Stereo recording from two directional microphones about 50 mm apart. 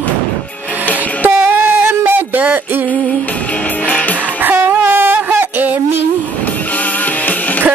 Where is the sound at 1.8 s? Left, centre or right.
Right.